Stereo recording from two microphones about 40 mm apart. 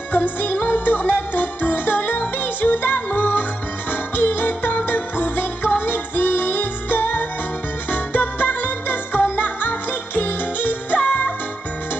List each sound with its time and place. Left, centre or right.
0.1 s music: left
3.9 s music: left
11.0 s music: left